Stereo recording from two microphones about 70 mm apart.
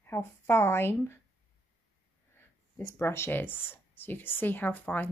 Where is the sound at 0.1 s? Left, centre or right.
Left.